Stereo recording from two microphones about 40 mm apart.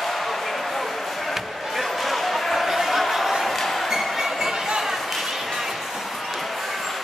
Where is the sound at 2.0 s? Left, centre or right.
Centre.